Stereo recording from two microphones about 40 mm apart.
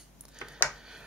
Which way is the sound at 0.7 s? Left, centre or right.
Centre.